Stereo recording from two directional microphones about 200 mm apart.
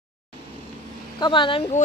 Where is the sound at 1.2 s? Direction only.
25° left (ahead or behind).